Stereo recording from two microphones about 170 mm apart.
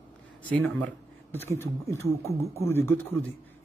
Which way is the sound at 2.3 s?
40° right (ahead or behind).